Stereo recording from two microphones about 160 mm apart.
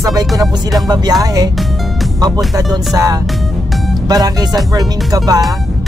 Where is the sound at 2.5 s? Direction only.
20° right (ahead or behind).